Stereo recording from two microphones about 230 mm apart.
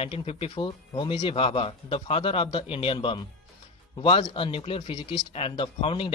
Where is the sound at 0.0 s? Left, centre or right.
Left.